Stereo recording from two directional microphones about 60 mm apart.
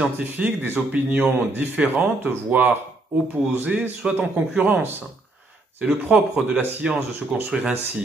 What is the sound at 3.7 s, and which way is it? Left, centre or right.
Speech, centre.